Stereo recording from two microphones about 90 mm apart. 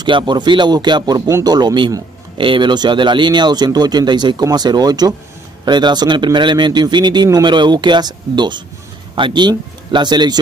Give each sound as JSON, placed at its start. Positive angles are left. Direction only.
{"t": 0.0, "sound": "speech", "side_deg": -55}
{"t": 2.3, "sound": "speech", "side_deg": -70}